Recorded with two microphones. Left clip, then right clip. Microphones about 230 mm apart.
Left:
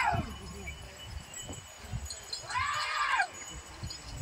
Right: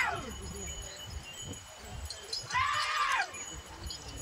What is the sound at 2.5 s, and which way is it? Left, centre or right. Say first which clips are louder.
Shatter: right 2 dB; centre.